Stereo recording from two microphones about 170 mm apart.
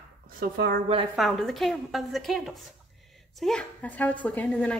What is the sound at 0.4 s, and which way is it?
Speech, 60° right (ahead or behind).